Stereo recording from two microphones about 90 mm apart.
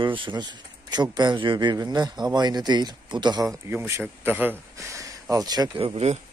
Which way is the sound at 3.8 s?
30° right (ahead or behind).